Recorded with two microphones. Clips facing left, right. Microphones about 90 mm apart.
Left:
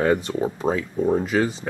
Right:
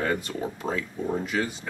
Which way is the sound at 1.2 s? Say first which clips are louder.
Left 7 dB; 40° left (ahead or behind).